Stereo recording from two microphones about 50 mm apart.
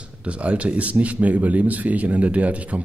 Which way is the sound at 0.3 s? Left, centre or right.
Right.